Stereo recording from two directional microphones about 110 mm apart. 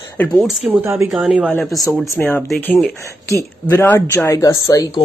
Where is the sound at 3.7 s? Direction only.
20° left (ahead or behind).